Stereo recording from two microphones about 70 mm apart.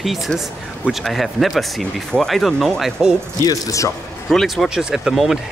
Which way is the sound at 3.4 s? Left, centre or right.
Left.